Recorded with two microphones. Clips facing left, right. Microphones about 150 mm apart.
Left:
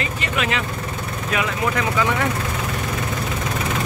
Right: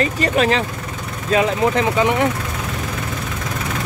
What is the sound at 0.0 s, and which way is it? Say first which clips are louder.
Speech: right 7 dB; 35° right (ahead or behind).